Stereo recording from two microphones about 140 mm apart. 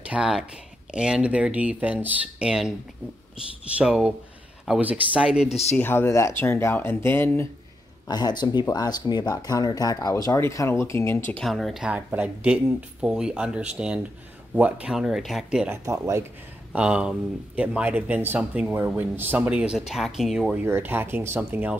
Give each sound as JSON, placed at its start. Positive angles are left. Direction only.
{"t": 0.0, "sound": "speech", "side_deg": -10}
{"t": 3.7, "sound": "speech", "side_deg": -5}
{"t": 5.5, "sound": "speech", "side_deg": 50}
{"t": 5.8, "sound": "speech", "side_deg": 15}
{"t": 8.1, "sound": "speech", "side_deg": 30}
{"t": 11.4, "sound": "speech", "side_deg": 0}
{"t": 15.7, "sound": "speech", "side_deg": -20}
{"t": 16.7, "sound": "speech", "side_deg": -10}
{"t": 20.5, "sound": "speech", "side_deg": -15}